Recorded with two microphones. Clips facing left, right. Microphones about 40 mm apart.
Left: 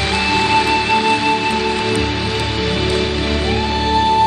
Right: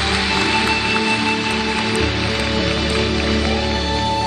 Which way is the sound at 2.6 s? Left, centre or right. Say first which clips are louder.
Left 1 dB; left.